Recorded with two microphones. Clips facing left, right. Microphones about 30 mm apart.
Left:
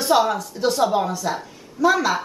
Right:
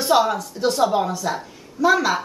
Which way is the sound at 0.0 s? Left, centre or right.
Centre.